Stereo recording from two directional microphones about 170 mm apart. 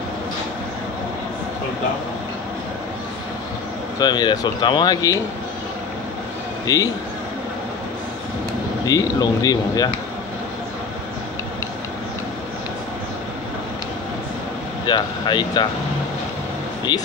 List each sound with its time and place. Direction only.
4.0 s speech: 25° left (ahead or behind)
6.6 s a man's voice: 20° left (ahead or behind)
8.8 s speech: 20° left (ahead or behind)
14.9 s speech: 25° left (ahead or behind)